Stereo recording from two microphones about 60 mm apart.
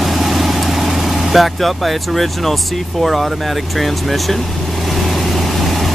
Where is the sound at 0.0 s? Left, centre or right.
Centre.